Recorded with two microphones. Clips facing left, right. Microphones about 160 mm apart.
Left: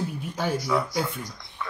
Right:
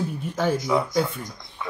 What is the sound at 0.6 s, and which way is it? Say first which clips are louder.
Speech: right 3 dB; 20° right (ahead or behind).